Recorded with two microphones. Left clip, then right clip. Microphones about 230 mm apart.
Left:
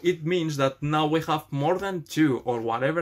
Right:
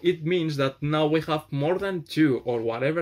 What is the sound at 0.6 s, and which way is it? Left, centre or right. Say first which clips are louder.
Speech: even; left.